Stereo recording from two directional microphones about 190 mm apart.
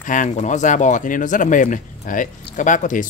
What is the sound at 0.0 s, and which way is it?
Speech, 45° left (ahead or behind).